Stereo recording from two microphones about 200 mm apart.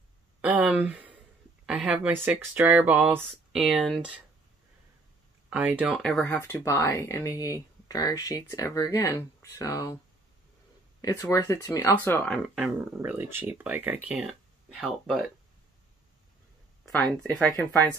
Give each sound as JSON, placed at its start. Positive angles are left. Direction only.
{"t": 0.4, "sound": "a sound", "side_deg": -5}
{"t": 1.7, "sound": "speech", "side_deg": -5}
{"t": 5.5, "sound": "speech", "side_deg": -10}
{"t": 6.2, "sound": "speech", "side_deg": 10}
{"t": 11.0, "sound": "speech", "side_deg": 15}
{"t": 12.5, "sound": "speech", "side_deg": -5}
{"t": 17.3, "sound": "speech", "side_deg": 0}